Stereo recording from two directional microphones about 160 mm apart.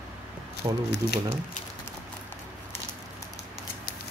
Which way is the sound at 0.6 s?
25° right (ahead or behind).